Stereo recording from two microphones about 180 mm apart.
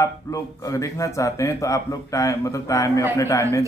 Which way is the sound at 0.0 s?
20° left (ahead or behind).